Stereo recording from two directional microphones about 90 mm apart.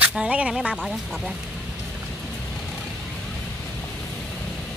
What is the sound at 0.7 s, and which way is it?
Speech, 5° left (ahead or behind).